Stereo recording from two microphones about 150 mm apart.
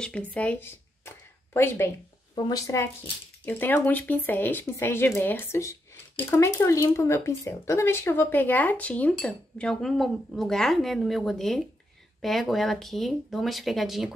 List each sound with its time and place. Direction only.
0.0 s speech: 5° left (ahead or behind)
2.3 s speech: 25° left (ahead or behind); by 14.1 s centre (ahead or behind)